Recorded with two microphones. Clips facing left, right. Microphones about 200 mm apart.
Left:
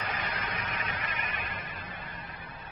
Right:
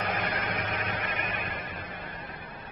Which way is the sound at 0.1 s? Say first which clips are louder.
Right 5 dB; 65° right (ahead or behind).